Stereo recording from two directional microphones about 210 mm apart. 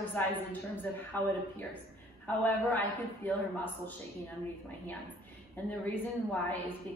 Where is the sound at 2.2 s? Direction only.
10° left (ahead or behind).